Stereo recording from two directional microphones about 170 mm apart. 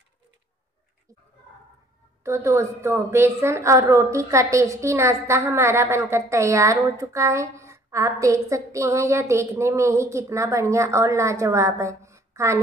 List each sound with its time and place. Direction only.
2.2 s a woman's voice: 15° right (ahead or behind)